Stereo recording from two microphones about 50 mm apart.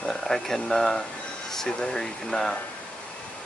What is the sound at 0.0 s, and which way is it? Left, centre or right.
Speech, centre.